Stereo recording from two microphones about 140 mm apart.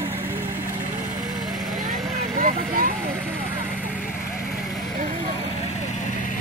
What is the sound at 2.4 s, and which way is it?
Speech, 80° right.